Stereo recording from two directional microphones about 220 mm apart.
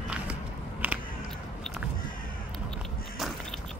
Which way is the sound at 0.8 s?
5° right (ahead or behind).